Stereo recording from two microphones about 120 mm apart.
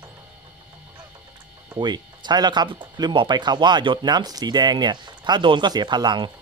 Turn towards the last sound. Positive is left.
turn(degrees=-40)  # may be behind; listen again after turning